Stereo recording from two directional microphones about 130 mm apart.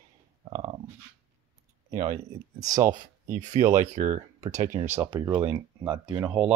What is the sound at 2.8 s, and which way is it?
Speech, 85° right.